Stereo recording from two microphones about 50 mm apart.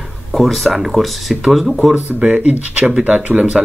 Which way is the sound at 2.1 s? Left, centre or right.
Right.